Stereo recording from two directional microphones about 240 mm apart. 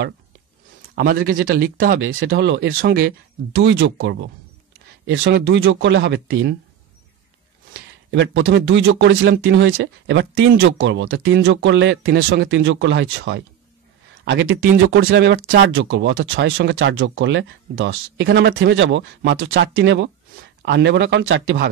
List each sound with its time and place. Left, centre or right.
0.9 s speech: right
3.1 s speech: right
8.1 s speech: right